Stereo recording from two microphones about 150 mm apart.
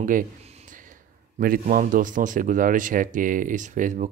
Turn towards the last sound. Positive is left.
turn(degrees=-55)  # may be behind; listen again after turning